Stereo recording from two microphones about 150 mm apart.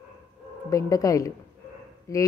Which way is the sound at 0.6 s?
20° left (ahead or behind).